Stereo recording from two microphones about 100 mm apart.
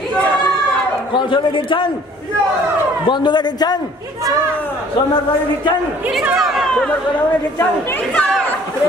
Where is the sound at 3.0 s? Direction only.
50° left (ahead or behind).